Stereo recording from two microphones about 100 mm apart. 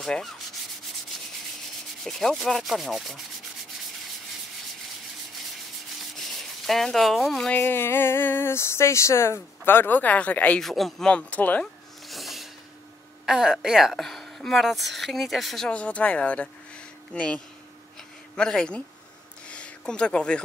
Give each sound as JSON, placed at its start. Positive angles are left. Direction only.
{"t": 0.0, "sound": "rub", "side_deg": 5}
{"t": 2.0, "sound": "rub", "side_deg": 5}
{"t": 6.1, "sound": "rub", "side_deg": 5}
{"t": 7.5, "sound": "speech", "side_deg": 25}
{"t": 10.6, "sound": "rub", "side_deg": 0}
{"t": 11.1, "sound": "speech", "side_deg": 15}
{"t": 12.1, "sound": "snort", "side_deg": 0}
{"t": 13.2, "sound": "speech", "side_deg": -5}
{"t": 19.4, "sound": "a sound", "side_deg": 10}